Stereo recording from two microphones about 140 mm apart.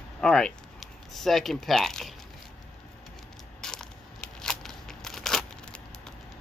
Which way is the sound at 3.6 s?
5° left (ahead or behind).